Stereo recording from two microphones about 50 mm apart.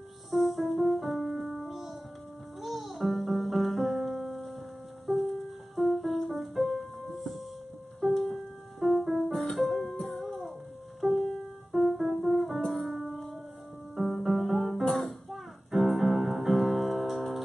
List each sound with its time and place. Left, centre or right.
0.3 s music: centre
9.3 s music: centre
9.6 s music: centre